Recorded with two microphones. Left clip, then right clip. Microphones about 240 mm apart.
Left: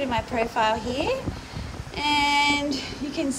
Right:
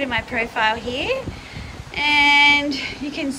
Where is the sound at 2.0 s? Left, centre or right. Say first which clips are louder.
Right 7 dB; centre.